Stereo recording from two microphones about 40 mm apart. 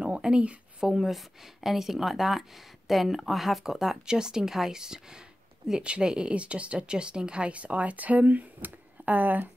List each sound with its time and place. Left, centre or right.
0.0 s a sound: right
0.4 s a woman's voice: right
0.8 s speech: centre; by 9.5 s right